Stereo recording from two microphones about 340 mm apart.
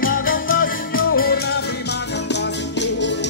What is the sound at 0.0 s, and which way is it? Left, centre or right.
Music, left.